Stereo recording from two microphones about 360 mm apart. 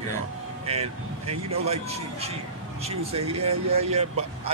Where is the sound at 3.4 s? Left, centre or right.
Right.